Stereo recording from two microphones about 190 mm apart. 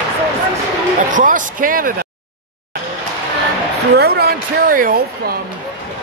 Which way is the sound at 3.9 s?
55° right (ahead or behind).